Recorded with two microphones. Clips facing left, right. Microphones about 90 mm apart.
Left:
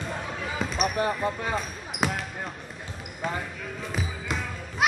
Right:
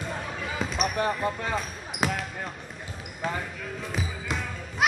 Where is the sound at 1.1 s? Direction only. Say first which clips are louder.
Even; centre (ahead or behind).